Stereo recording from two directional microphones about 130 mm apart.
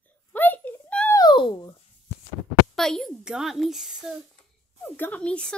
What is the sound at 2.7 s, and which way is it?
Speech, 5° left (ahead or behind).